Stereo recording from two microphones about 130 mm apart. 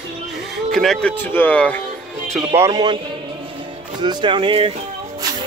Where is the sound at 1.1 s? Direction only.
15° left (ahead or behind).